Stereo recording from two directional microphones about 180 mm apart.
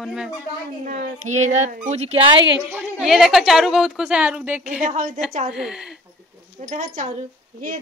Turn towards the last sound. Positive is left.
turn(degrees=-45)  # may be behind; listen again after turning